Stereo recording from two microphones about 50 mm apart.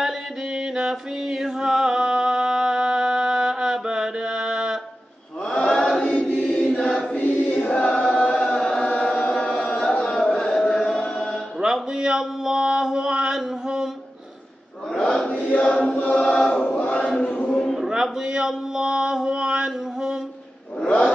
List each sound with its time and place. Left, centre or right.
0.6 s music: centre
5.4 s chant: centre
6.0 s choir: left
6.4 s choir: centre
7.2 s choir: left
8.3 s chant: centre
9.3 s carnatic music: centre
10.3 s chant: centre
11.6 s mantra: centre
15.2 s choir: left
17.1 s chant: centre
17.4 s a sound: left
17.7 s mantra: centre